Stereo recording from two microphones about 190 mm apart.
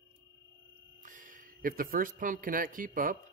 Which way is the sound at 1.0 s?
45° right (ahead or behind).